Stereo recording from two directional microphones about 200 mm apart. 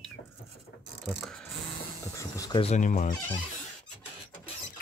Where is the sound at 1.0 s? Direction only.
Centre (ahead or behind).